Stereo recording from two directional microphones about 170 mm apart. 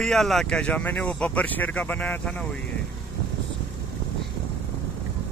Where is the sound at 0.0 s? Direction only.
Centre (ahead or behind).